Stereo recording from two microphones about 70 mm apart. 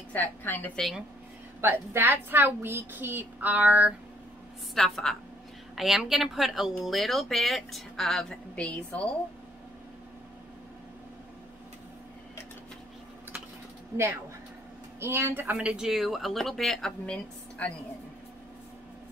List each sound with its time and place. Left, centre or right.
0.1 s a woman's voice: left
1.6 s a woman's voice: right
4.7 s speech: centre
8.5 s a woman's voice: centre
15.0 s a woman's voice: right
15.6 s speech: centre
17.0 s a woman's voice: centre